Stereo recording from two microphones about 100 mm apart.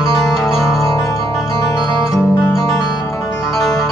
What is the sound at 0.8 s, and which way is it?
Music, 30° left (ahead or behind).